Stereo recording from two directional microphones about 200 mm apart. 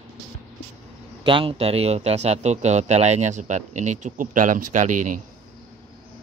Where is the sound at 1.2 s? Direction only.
25° right (ahead or behind).